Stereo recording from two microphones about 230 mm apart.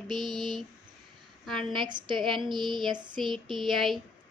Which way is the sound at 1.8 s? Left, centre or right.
Centre.